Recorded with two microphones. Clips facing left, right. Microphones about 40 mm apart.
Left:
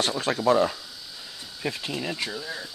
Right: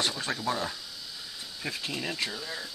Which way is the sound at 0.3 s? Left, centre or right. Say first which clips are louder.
Left 7 dB; left.